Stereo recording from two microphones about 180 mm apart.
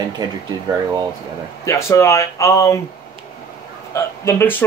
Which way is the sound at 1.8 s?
15° left (ahead or behind).